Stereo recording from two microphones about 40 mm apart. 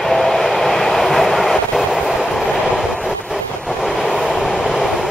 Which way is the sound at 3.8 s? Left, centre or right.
Centre.